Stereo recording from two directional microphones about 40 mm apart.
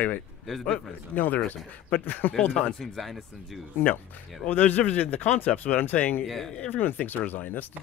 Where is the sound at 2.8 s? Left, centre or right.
Centre.